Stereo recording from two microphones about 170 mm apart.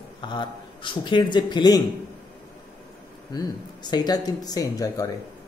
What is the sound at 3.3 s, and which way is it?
Speech, 25° left (ahead or behind).